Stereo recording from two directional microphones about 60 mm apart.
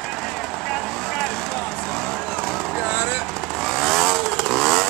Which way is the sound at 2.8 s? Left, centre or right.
Right.